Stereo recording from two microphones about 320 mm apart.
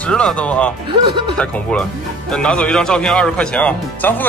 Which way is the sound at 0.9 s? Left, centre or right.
Centre.